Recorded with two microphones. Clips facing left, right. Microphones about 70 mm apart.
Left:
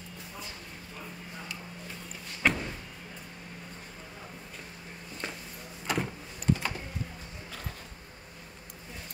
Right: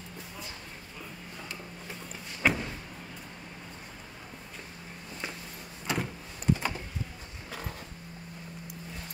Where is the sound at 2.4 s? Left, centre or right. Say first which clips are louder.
Even; centre.